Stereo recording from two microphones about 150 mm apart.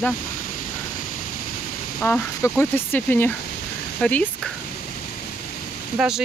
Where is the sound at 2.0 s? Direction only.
15° left (ahead or behind).